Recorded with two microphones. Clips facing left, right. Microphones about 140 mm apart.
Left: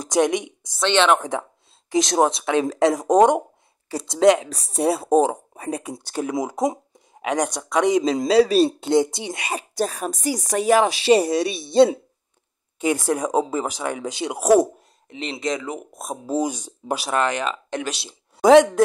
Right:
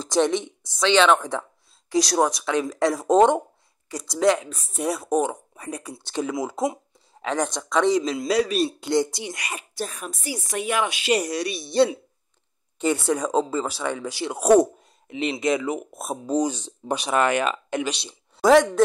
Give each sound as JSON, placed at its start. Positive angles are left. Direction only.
{"t": 0.0, "sound": "a woman's voice", "side_deg": 15}
{"t": 0.7, "sound": "speech", "side_deg": 0}
{"t": 1.9, "sound": "a woman's voice", "side_deg": 20}
{"t": 12.7, "sound": "speech", "side_deg": 10}
{"t": 14.4, "sound": "speech", "side_deg": 5}
{"t": 15.0, "sound": "speech", "side_deg": -5}
{"t": 16.3, "sound": "speech", "side_deg": 10}
{"t": 17.2, "sound": "speech", "side_deg": -10}
{"t": 18.4, "sound": "a woman's voice", "side_deg": 20}